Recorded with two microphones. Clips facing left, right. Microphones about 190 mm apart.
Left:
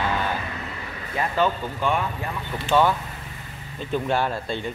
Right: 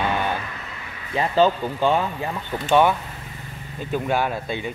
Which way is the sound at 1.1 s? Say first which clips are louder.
Right 5 dB; 30° right (ahead or behind).